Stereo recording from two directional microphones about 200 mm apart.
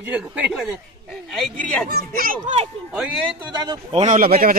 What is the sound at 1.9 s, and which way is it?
Speech, 50° right (ahead or behind).